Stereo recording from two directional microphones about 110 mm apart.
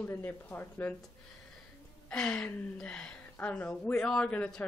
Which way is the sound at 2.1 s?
5° left (ahead or behind).